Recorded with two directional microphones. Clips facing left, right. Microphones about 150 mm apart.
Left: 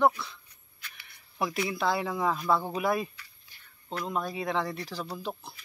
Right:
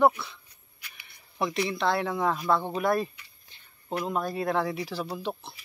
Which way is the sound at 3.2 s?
20° right (ahead or behind).